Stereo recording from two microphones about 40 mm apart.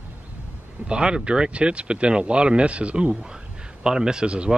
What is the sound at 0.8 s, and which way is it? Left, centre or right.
Speech, right.